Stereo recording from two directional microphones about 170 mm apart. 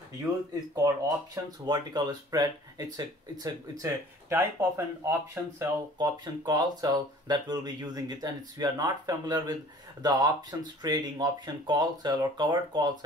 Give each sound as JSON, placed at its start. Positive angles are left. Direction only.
{"t": 0.8, "sound": "speech", "side_deg": -20}